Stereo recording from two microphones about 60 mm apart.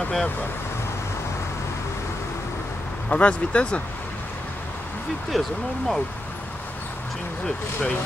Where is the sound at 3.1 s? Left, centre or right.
Left.